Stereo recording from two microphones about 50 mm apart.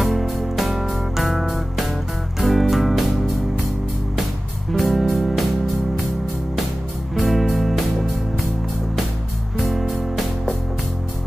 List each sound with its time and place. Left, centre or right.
0.0 s music: centre
4.7 s music: centre
7.2 s music: centre
9.6 s music: centre